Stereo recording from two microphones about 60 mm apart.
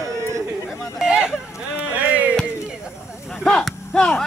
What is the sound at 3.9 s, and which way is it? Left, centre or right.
Speech, centre.